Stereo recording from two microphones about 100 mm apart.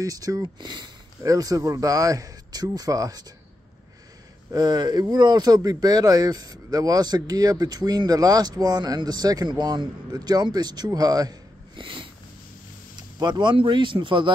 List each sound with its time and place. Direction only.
0.0 s speech: 35° right (ahead or behind)
0.6 s speech: 50° right (ahead or behind)
4.5 s speech: 40° right (ahead or behind)
11.7 s a sound: 60° right (ahead or behind)
13.2 s speech: 50° right (ahead or behind)